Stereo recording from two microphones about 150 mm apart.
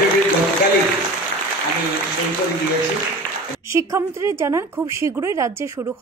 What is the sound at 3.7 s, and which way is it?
A woman's voice, 20° right (ahead or behind).